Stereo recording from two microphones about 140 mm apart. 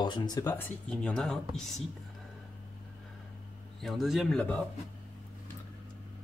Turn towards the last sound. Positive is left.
turn(degrees=0)  # may be behind; listen again after turning